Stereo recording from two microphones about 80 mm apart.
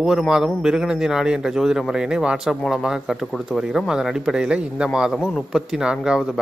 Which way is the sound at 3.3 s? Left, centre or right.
Centre.